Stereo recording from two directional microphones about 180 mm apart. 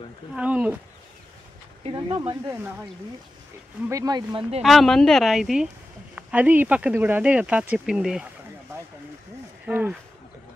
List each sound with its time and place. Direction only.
0.4 s speech: 10° right (ahead or behind)
1.8 s speech: 25° right (ahead or behind)
3.9 s speech: 20° right (ahead or behind)
4.6 s speech: centre (ahead or behind)
9.7 s speech: 10° right (ahead or behind)